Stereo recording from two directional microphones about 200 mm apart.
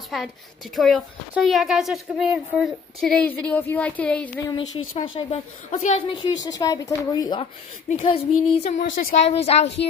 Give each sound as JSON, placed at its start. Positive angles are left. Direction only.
{"t": 0.1, "sound": "a woman's voice", "side_deg": 0}
{"t": 4.9, "sound": "a woman's voice", "side_deg": 25}